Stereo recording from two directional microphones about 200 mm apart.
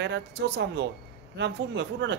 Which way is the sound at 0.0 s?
55° right (ahead or behind).